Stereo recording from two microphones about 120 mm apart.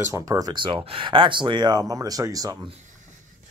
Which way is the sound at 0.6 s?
50° right (ahead or behind).